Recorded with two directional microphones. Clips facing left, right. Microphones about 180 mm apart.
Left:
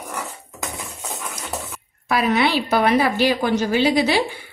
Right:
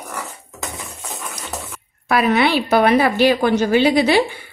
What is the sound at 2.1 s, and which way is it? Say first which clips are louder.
A woman's voice: right 3 dB; 60° right (ahead or behind).